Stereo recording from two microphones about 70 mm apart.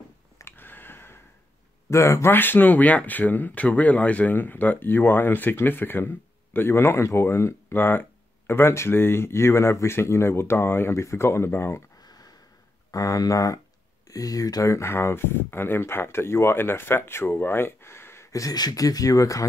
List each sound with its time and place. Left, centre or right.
0.4 s a sound: left
1.9 s speech: left
2.3 s speech: left
12.0 s a sound: left
12.9 s speech: left
14.7 s speech: left
18.3 s speech: left